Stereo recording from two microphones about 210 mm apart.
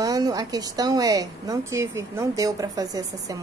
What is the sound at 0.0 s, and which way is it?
A woman's voice, 15° right (ahead or behind).